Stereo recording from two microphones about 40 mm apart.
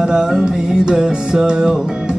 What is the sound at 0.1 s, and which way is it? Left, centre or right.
Music, centre.